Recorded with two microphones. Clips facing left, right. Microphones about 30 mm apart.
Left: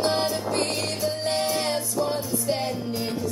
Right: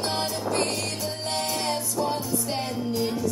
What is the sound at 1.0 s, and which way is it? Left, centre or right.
Music, left.